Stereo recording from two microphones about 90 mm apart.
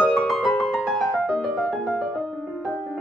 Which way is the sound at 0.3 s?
Centre (ahead or behind).